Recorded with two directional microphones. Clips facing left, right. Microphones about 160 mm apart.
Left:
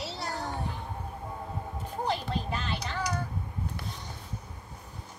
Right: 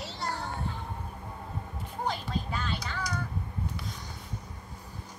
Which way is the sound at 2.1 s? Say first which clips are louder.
Left 2 dB; 70° left (ahead or behind).